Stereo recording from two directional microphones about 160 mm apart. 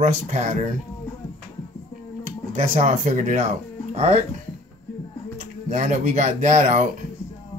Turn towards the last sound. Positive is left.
turn(degrees=-50)  # may be behind; listen again after turning